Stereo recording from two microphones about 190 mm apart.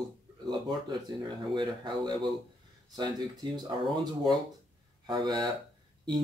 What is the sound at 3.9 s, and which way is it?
Speech, 25° right (ahead or behind).